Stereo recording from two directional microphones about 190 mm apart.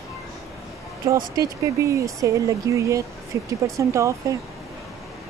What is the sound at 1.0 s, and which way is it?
Speech, 15° right (ahead or behind).